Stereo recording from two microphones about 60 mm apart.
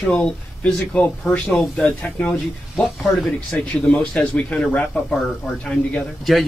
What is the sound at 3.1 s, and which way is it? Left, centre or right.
Speech, centre.